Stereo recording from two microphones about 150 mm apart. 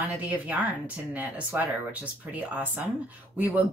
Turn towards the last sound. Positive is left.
turn(degrees=-10)  # may be behind; listen again after turning